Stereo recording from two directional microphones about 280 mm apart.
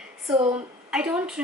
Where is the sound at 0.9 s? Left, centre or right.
Centre.